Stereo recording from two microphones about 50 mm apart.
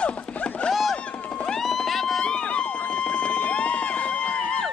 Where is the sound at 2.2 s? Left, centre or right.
Centre.